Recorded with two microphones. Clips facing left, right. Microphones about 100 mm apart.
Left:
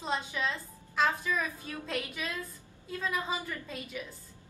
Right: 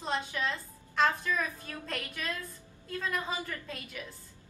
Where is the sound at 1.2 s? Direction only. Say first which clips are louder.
Even; 15° left (ahead or behind).